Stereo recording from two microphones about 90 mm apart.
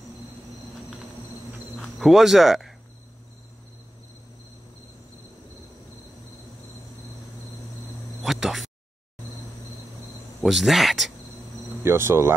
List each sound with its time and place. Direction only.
1.8 s speech: centre (ahead or behind)
8.2 s a sound: 5° right (ahead or behind)
10.4 s speech: centre (ahead or behind)
11.8 s speech: 30° right (ahead or behind)